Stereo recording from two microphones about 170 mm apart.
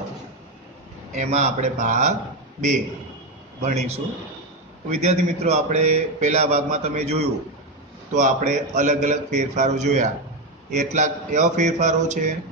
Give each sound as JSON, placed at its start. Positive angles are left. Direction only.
{"t": 1.1, "sound": "a man's voice", "side_deg": -45}
{"t": 3.6, "sound": "a man's voice", "side_deg": -40}